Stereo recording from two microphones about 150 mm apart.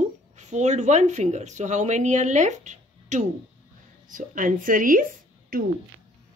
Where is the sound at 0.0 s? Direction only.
50° right (ahead or behind).